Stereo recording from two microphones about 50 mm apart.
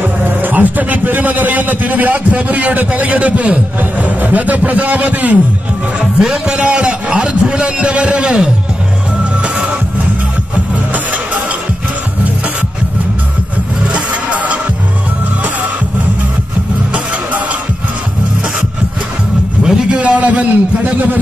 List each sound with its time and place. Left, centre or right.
0.2 s a man's voice: right
5.9 s a man's voice: centre
9.2 s music: right
14.3 s music: right
19.6 s a sound: centre
20.0 s a man's voice: right